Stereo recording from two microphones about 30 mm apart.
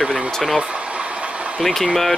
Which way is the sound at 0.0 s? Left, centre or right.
Centre.